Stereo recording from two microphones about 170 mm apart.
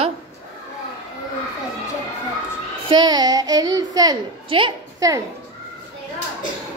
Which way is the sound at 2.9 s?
25° right (ahead or behind).